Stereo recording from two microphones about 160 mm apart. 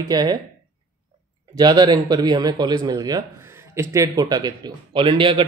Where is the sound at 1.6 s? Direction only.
25° right (ahead or behind).